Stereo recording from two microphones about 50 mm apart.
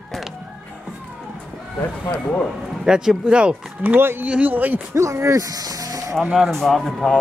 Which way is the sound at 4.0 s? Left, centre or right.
Right.